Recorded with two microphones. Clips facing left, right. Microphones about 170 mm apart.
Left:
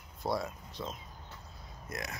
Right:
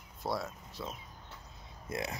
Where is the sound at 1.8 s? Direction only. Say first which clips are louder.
Right 4 dB; 30° right (ahead or behind).